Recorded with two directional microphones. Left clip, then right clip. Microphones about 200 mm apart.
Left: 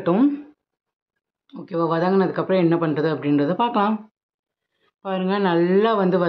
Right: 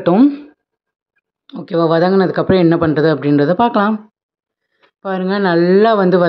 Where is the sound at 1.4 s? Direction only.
30° right (ahead or behind).